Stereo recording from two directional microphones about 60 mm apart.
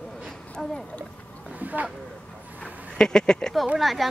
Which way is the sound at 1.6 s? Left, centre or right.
Right.